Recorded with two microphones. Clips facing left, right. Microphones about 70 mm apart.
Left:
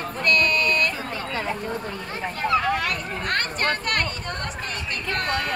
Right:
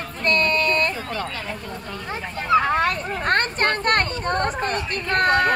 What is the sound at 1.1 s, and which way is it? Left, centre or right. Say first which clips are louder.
Speech: left 1 dB; left.